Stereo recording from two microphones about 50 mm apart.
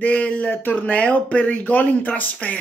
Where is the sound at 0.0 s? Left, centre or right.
Left.